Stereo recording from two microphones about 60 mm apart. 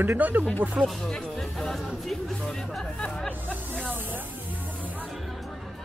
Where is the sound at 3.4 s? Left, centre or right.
Right.